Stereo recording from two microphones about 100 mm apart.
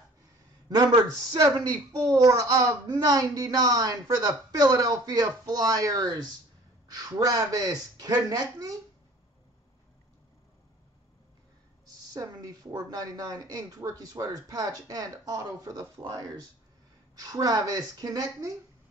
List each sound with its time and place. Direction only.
0.7 s speech: 45° right (ahead or behind)
11.8 s speech: 40° right (ahead or behind)